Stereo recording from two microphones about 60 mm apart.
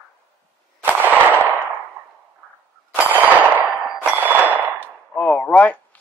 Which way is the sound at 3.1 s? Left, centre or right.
Right.